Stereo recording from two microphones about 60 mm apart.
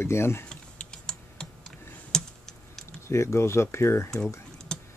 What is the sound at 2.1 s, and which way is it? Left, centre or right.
Computer keyboard, centre.